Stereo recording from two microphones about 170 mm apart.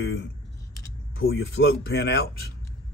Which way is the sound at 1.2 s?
70° left (ahead or behind).